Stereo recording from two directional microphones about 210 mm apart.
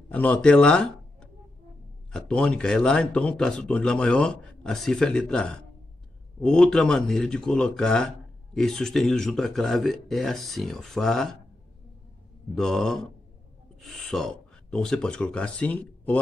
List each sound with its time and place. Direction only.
0.1 s speech: 5° left (ahead or behind)
12.5 s speech: centre (ahead or behind)